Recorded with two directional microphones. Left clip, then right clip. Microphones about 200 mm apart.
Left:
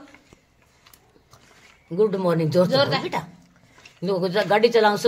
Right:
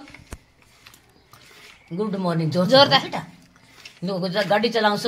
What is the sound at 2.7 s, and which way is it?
Speech, 50° right (ahead or behind).